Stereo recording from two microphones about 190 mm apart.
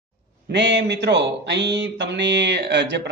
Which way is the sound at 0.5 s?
65° right (ahead or behind).